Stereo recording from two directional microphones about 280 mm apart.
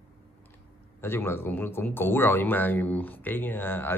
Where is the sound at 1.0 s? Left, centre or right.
Centre.